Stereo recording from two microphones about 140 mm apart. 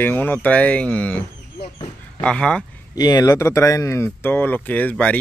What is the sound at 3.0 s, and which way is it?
Speech, 30° left (ahead or behind).